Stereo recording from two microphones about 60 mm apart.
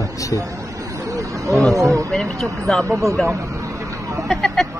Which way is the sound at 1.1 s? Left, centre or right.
Right.